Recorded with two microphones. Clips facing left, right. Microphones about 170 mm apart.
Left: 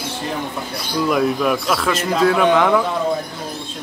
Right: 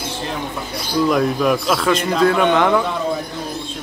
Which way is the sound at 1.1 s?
Centre (ahead or behind).